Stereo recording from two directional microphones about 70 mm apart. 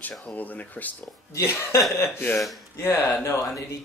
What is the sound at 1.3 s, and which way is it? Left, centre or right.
Speech, left.